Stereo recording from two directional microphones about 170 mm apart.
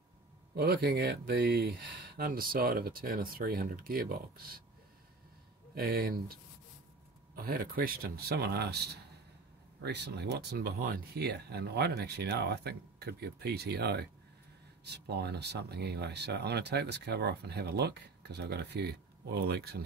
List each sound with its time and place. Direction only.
0.6 s speech: 65° right (ahead or behind)
5.8 s speech: 60° right (ahead or behind)
9.8 s speech: 85° right
19.3 s speech: 65° right (ahead or behind)